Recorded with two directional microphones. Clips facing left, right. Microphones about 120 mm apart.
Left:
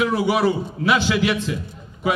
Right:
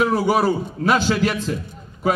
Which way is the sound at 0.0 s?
40° right (ahead or behind).